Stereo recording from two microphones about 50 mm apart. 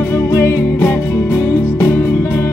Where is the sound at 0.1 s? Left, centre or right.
Left.